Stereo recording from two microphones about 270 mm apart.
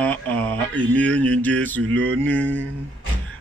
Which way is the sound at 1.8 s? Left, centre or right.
Right.